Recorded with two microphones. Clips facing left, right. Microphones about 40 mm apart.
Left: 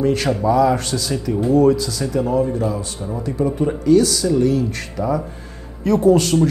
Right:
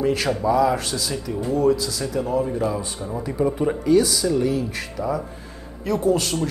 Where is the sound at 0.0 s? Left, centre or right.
Centre.